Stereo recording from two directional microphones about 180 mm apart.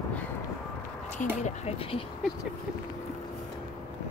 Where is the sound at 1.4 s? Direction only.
40° left (ahead or behind).